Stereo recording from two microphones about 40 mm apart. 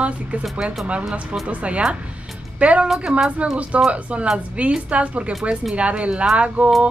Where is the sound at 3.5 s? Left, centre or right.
Right.